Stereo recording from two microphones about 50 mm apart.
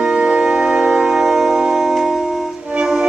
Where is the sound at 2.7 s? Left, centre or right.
Centre.